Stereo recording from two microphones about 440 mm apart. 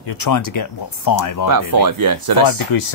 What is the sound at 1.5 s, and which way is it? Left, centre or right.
Speech, right.